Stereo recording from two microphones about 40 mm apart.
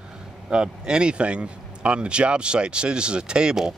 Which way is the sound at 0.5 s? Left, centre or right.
Right.